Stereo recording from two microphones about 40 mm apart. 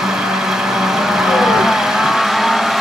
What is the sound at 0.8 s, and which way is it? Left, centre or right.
Vehicle, centre.